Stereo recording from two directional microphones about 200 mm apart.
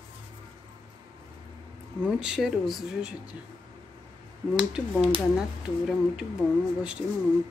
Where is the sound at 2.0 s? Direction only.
5° right (ahead or behind).